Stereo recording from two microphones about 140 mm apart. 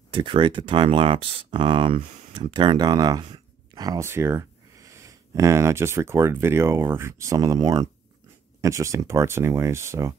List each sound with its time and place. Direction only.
0.1 s speech: 35° right (ahead or behind); by 10.1 s 20° right (ahead or behind)